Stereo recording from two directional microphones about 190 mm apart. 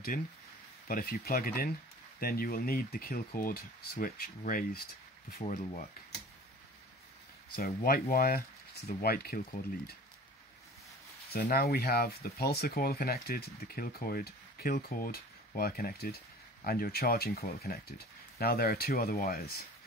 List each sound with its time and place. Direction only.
0.8 s speech: 50° left (ahead or behind)
7.5 s speech: 50° left (ahead or behind)
11.3 s speech: 50° left (ahead or behind)